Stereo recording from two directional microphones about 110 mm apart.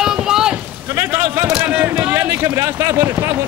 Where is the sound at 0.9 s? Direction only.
20° right (ahead or behind).